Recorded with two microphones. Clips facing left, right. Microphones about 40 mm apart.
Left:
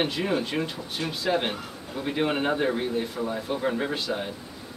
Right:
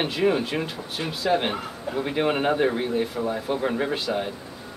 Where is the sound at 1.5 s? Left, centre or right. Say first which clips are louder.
Right 6 dB; centre.